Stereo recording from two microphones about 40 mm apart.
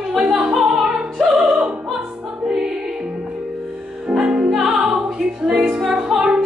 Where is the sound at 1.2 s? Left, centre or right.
Centre.